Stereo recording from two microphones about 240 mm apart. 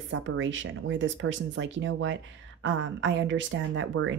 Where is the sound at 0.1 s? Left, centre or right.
Right.